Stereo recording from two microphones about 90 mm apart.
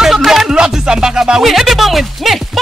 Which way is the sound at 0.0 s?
5° right (ahead or behind).